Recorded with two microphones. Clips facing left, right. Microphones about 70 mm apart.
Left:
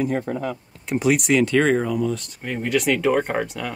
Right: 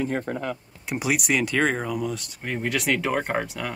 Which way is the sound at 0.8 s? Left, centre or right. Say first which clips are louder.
Left 6 dB; centre.